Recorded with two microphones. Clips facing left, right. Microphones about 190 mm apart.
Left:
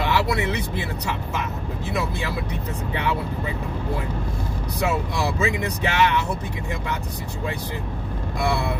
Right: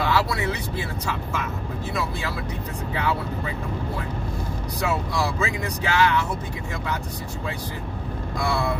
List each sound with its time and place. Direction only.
0.0 s speech: 20° left (ahead or behind)
4.8 s speech: 20° left (ahead or behind)
8.4 s speech: 20° left (ahead or behind)